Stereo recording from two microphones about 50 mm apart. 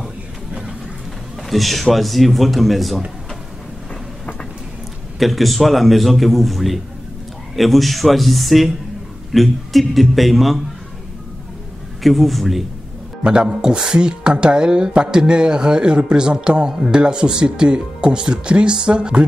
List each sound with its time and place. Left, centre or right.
1.5 s a man's voice: centre
5.2 s a man's voice: centre
12.0 s a man's voice: centre
13.2 s speech: right